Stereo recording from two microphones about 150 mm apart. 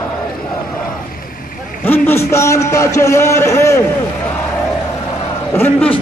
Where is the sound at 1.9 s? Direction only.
15° left (ahead or behind).